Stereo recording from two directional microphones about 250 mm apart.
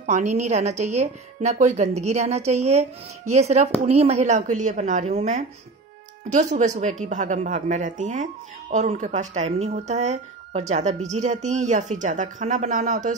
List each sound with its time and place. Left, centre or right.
0.0 s a woman's voice: right